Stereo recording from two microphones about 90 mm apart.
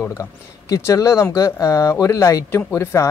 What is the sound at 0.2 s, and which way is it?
Speech, 35° left (ahead or behind).